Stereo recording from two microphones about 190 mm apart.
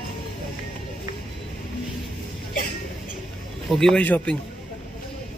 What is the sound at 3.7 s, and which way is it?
Speech, centre (ahead or behind).